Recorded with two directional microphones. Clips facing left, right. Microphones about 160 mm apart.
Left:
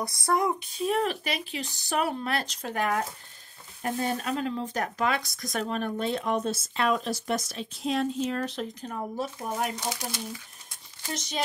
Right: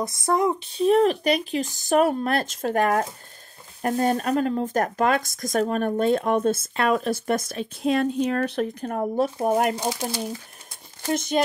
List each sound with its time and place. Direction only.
0.0 s speech: 20° right (ahead or behind); by 11.4 s 50° right (ahead or behind)